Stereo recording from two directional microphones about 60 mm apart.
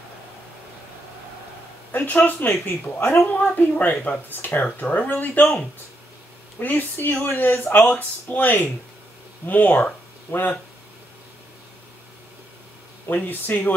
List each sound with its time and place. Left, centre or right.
1.9 s speech: left
6.6 s speech: left
13.0 s speech: left